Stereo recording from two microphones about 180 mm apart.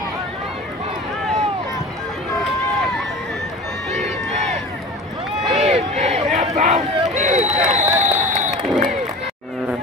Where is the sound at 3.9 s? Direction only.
35° right (ahead or behind).